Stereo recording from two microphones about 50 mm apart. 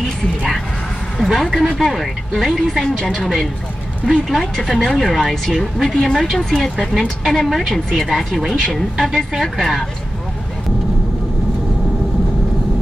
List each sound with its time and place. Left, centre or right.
1.1 s speech: centre
4.1 s speech: centre